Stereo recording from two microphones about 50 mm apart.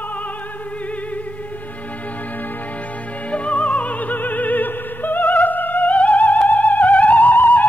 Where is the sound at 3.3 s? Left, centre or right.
Left.